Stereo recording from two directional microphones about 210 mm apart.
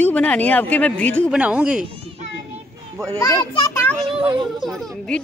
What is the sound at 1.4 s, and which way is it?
Speech, 5° right (ahead or behind).